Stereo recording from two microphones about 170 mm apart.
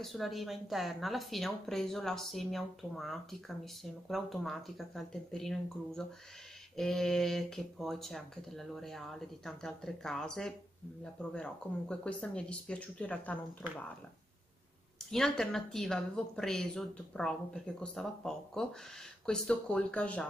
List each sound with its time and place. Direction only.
0.0 s speech: centre (ahead or behind)
15.0 s speech: 5° left (ahead or behind)